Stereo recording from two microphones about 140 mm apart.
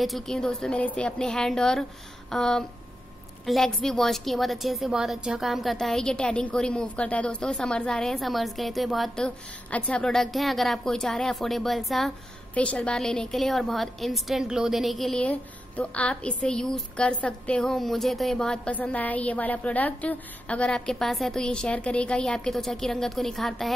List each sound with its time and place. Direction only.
0.0 s a woman's voice: centre (ahead or behind)